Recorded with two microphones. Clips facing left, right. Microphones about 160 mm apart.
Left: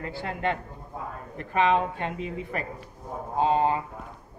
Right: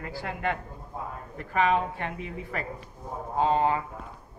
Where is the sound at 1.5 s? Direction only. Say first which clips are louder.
Left 2 dB; 20° left (ahead or behind).